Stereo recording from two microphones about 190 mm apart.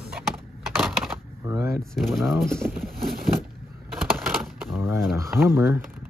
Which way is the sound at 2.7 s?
55° right (ahead or behind).